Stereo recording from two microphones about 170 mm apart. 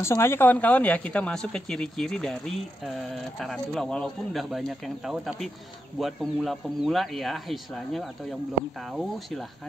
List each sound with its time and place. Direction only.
0.0 s speech: 15° left (ahead or behind); by 9.5 s centre (ahead or behind)